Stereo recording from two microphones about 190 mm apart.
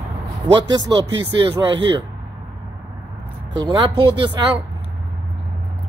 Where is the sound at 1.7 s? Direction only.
25° right (ahead or behind).